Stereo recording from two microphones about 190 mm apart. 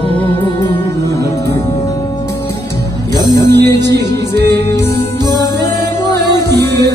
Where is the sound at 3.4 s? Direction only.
65° right (ahead or behind).